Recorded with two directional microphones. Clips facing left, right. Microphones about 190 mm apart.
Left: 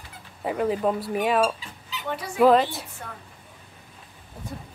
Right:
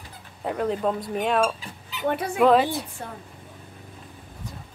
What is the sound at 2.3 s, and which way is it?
Speech, 5° left (ahead or behind).